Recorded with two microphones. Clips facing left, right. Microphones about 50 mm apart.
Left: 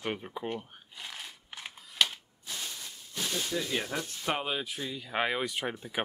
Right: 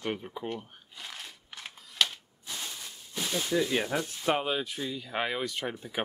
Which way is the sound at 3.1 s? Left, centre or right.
Centre.